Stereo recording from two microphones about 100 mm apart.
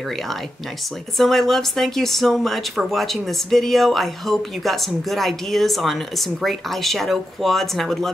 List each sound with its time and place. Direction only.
1.1 s speech: centre (ahead or behind)